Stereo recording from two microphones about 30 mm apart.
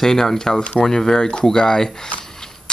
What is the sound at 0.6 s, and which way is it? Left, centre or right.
Speech, left.